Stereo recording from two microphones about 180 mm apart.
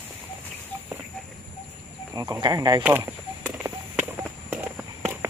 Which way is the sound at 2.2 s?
20° right (ahead or behind).